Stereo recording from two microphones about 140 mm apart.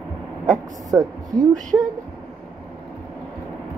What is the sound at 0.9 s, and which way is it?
Speech, 25° right (ahead or behind).